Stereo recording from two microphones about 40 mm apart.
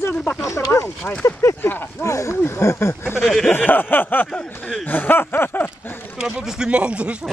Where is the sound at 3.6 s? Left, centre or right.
Left.